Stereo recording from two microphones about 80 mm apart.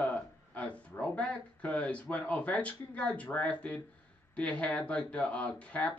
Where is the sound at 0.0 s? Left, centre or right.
Centre.